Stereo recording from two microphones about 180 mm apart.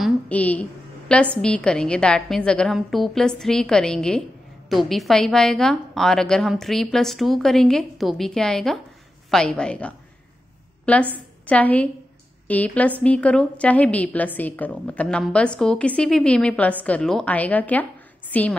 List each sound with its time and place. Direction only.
0.0 s a woman's voice: 10° left (ahead or behind)
11.4 s a woman's voice: 10° left (ahead or behind)